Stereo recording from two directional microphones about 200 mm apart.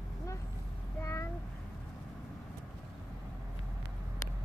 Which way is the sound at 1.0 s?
15° left (ahead or behind).